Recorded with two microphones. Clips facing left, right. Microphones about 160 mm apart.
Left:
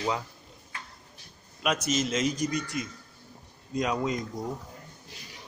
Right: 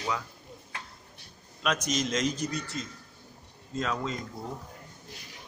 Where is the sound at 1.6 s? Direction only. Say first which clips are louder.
Left 2 dB; 10° left (ahead or behind).